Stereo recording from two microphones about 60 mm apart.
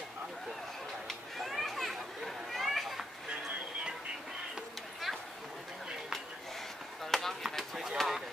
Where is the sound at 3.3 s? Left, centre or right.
Centre.